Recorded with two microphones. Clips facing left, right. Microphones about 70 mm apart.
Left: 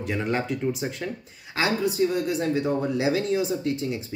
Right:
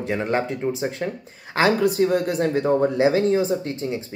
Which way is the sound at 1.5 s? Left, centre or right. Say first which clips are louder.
Right 6 dB; right.